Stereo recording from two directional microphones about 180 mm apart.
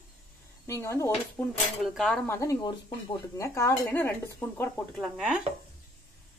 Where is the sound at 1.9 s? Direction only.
5° left (ahead or behind).